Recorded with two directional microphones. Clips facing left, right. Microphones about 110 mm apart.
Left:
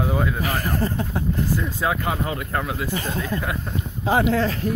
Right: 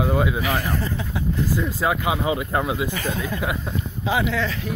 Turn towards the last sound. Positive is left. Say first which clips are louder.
# left 4 dB
turn(degrees=45)  # may be behind; listen again after turning